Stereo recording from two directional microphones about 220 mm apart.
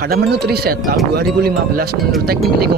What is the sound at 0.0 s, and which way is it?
Speech, 45° right (ahead or behind).